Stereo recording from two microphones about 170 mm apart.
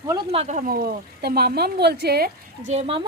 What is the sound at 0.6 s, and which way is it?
Speech, 60° right (ahead or behind).